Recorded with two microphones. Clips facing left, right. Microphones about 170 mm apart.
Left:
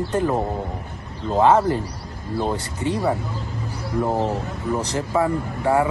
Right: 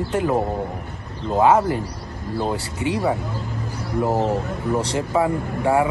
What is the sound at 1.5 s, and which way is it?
Speech, 15° right (ahead or behind).